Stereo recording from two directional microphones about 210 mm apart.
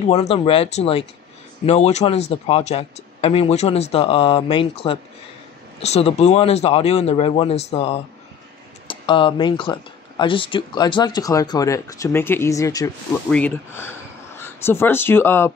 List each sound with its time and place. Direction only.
0.1 s speech: 30° left (ahead or behind); by 15.5 s 10° left (ahead or behind)